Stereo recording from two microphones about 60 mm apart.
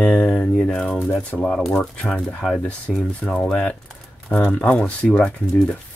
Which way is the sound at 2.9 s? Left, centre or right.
Centre.